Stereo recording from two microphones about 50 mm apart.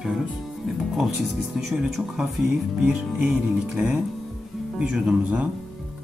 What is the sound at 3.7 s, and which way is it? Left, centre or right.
Speech, centre.